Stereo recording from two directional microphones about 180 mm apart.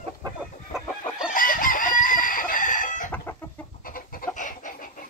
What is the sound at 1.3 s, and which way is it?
Chicken, 50° left (ahead or behind).